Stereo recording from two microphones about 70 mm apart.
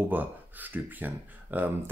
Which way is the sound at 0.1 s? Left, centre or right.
Right.